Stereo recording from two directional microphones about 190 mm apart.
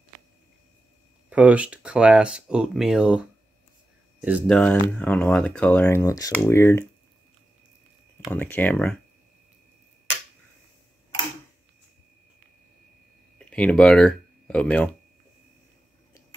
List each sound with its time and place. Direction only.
1.3 s speech: 5° right (ahead or behind)
4.5 s speech: 5° left (ahead or behind)
8.2 s speech: 5° left (ahead or behind)
13.5 s speech: 5° left (ahead or behind)